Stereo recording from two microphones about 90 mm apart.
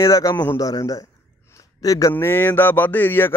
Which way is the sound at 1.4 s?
40° left (ahead or behind).